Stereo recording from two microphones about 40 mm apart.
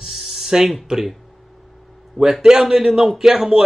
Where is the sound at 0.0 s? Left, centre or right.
Centre.